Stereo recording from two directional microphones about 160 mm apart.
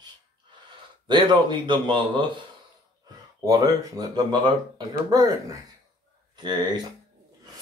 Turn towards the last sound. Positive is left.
turn(degrees=-25)  # may be behind; listen again after turning